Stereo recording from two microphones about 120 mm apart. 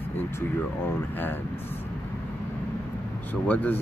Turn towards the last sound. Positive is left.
turn(degrees=15)  # may be behind; listen again after turning